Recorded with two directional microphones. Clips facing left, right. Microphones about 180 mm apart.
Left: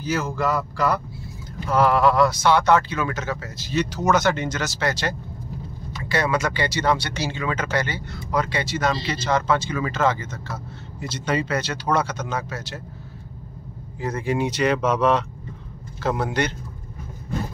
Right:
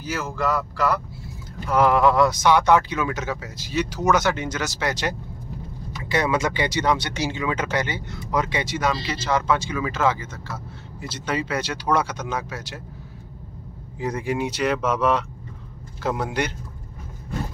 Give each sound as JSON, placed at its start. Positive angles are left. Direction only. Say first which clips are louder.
{"t": 0.0, "sound": "speech", "louder": "left 2 dB", "side_deg": -5}
{"t": 1.7, "sound": "speech", "louder": "even", "side_deg": -15}
{"t": 13.9, "sound": "speech", "louder": "left 1 dB", "side_deg": -15}